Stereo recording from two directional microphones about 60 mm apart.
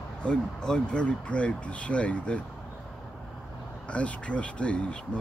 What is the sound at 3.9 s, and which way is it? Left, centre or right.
Speech, left.